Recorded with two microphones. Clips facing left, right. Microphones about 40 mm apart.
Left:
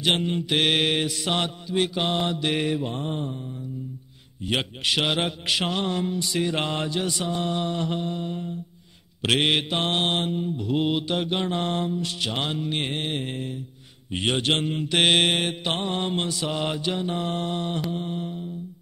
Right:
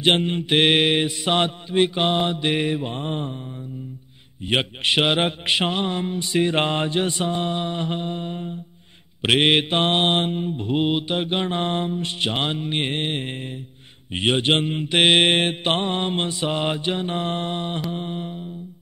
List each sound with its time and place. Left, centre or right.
0.0 s mantra: right; by 2.9 s centre
2.9 s mantra: right
4.4 s mantra: right
14.1 s mantra: right
15.3 s mantra: right